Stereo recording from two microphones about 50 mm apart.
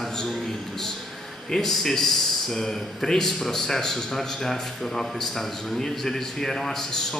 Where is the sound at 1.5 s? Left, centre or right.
Centre.